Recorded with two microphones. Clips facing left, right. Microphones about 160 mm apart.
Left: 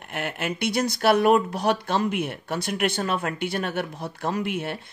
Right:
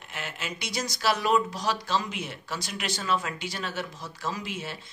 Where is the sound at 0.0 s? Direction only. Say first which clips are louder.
Left 8 dB; 60° left (ahead or behind).